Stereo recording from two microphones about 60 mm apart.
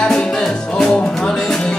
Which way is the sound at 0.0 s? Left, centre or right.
Centre.